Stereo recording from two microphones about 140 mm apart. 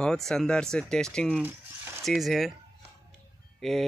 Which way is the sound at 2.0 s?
Centre (ahead or behind).